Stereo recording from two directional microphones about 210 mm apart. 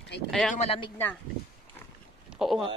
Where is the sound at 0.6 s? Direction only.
30° left (ahead or behind).